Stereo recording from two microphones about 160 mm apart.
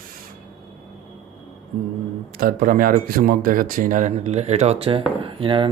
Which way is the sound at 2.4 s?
65° right (ahead or behind).